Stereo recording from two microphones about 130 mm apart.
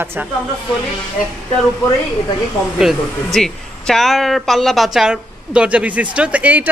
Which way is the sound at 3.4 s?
5° left (ahead or behind).